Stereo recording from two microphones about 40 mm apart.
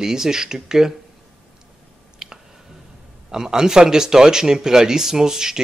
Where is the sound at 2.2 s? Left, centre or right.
Centre.